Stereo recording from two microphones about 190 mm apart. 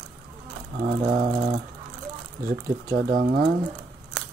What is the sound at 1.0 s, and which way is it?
Speech, 40° right (ahead or behind).